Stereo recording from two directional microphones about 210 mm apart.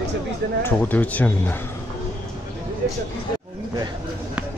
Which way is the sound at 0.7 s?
10° left (ahead or behind).